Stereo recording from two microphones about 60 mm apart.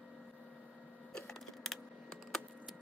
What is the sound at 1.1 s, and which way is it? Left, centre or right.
Computer keyboard, centre.